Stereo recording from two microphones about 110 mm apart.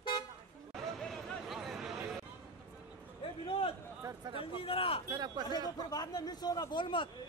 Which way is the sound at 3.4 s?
55° left (ahead or behind).